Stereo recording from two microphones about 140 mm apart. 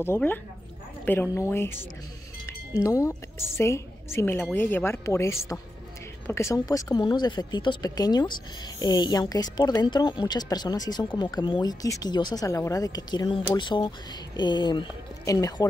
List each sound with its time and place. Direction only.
0.0 s a woman's voice: 15° left (ahead or behind)